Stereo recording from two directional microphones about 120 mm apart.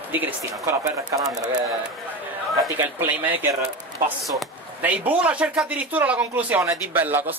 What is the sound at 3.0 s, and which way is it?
Speech, 15° right (ahead or behind).